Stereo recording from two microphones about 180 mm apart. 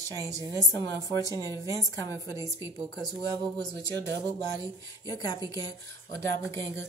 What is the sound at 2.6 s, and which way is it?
Speech, 15° right (ahead or behind).